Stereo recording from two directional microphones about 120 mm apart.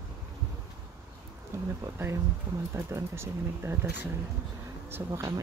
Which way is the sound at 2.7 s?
25° right (ahead or behind).